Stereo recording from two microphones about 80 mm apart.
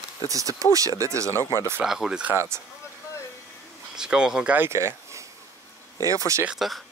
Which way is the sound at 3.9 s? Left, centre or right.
Centre.